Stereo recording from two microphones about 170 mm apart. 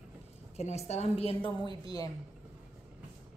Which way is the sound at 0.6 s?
40° left (ahead or behind).